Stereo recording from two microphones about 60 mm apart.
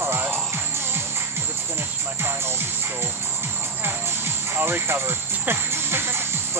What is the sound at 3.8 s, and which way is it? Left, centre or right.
Music, right.